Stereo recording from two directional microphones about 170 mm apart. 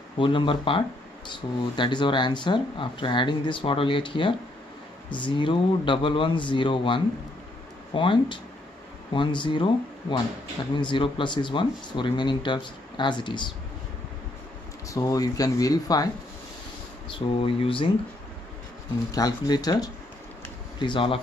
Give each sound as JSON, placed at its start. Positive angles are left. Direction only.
{"t": 0.2, "sound": "speech", "side_deg": 30}
{"t": 14.9, "sound": "speech", "side_deg": 20}
{"t": 17.1, "sound": "speech", "side_deg": 30}
{"t": 19.1, "sound": "speech", "side_deg": 20}